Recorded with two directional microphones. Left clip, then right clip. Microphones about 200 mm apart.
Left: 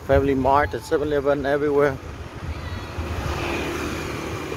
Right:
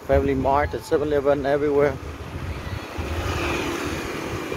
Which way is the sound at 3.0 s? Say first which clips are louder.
Right 1 dB; 50° right (ahead or behind).